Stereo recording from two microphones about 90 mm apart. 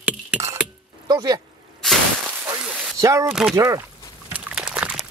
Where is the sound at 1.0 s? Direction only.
50° right (ahead or behind).